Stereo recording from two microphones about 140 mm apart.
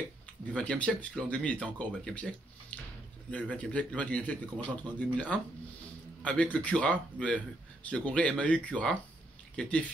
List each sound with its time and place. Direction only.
0.5 s a man's voice: 10° left (ahead or behind)